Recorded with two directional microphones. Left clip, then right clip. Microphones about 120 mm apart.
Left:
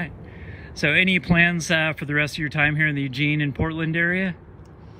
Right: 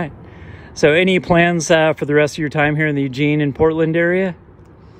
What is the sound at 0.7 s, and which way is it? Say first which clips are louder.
Speech: right 6 dB; 45° right (ahead or behind).